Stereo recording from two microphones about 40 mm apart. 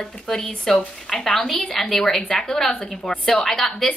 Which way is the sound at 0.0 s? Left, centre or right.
Centre.